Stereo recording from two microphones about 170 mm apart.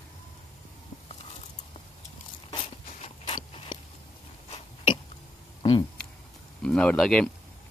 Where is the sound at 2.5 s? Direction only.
30° left (ahead or behind).